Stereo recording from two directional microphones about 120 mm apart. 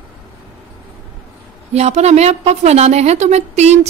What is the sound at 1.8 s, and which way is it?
A woman's voice, 65° right (ahead or behind).